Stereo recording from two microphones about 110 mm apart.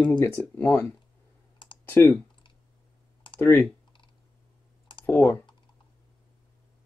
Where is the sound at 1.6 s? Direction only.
45° left (ahead or behind).